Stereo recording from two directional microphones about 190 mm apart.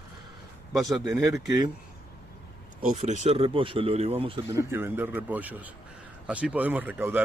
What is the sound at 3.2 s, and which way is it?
Speech, 30° right (ahead or behind).